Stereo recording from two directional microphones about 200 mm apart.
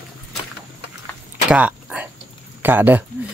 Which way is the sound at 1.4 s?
5° right (ahead or behind).